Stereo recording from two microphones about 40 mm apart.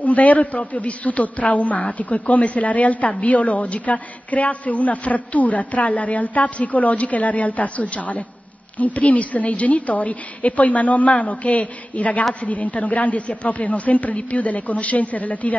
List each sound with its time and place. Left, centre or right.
0.0 s a woman's voice: left
3.1 s a woman's voice: left